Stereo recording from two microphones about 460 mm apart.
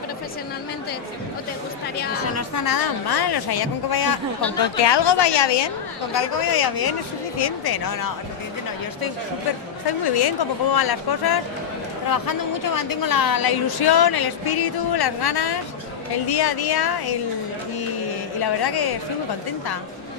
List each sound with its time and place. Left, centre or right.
2.3 s a woman's voice: left
4.8 s a woman's voice: left
6.1 s a woman's voice: left
9.8 s a woman's voice: left
18.4 s a woman's voice: left